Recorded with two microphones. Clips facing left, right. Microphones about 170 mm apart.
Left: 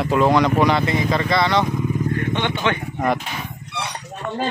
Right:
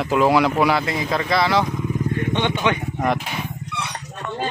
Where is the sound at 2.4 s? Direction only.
15° right (ahead or behind).